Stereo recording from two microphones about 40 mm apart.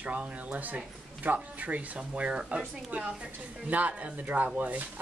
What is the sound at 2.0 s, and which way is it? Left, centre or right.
Speech, right.